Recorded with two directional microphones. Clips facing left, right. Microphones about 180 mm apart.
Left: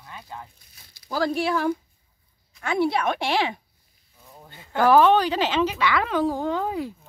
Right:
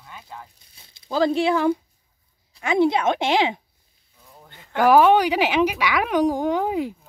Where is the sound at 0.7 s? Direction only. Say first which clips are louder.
Right 4 dB; 25° right (ahead or behind).